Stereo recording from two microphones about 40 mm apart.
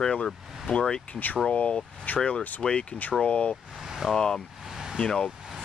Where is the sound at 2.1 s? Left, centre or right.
Left.